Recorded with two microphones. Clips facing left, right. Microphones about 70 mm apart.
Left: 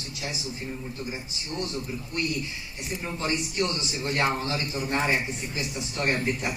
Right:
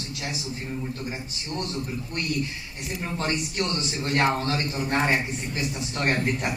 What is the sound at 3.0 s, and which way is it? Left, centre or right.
A man's voice, right.